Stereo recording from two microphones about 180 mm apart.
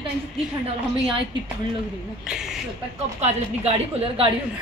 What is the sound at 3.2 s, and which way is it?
A woman's voice, 35° right (ahead or behind).